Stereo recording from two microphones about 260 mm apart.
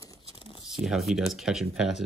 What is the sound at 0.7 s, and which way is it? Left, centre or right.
Speech, centre.